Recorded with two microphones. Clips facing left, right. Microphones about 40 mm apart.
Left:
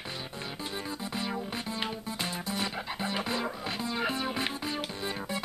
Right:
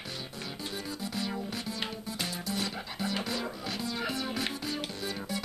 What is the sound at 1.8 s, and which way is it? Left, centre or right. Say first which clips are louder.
Music: left 2 dB; centre.